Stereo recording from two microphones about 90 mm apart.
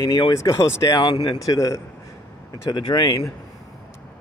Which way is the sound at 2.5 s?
50° left (ahead or behind).